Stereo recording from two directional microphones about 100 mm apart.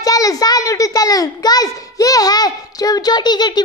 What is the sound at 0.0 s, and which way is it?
A child's voice, 35° left (ahead or behind).